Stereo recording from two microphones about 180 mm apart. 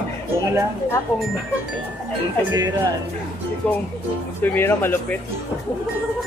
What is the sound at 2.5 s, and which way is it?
Speech, 20° right (ahead or behind).